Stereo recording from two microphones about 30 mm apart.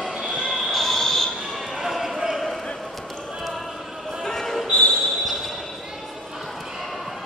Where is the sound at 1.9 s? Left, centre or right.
Centre.